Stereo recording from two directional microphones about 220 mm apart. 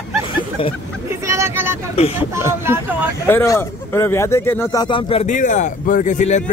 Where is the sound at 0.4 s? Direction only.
25° left (ahead or behind).